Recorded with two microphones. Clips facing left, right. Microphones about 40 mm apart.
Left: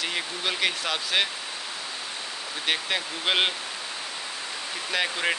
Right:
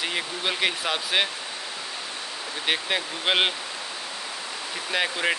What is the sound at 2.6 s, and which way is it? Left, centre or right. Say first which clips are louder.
Speech: right 1 dB; centre.